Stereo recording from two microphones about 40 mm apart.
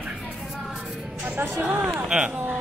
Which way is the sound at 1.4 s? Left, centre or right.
Right.